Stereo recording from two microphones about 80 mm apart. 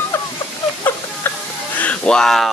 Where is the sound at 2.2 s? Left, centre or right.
Centre.